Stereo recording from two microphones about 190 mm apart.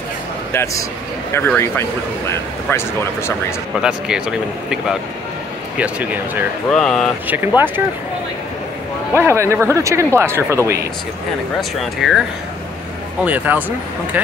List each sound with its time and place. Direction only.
0.5 s speech: 15° left (ahead or behind)
3.8 s speech: 5° right (ahead or behind)
6.7 s speech: 5° left (ahead or behind)
7.2 s speech: 10° right (ahead or behind)
9.1 s speech: 15° right (ahead or behind)
11.8 s speech: centre (ahead or behind)